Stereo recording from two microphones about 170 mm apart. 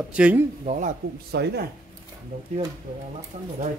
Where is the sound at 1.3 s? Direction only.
70° right (ahead or behind).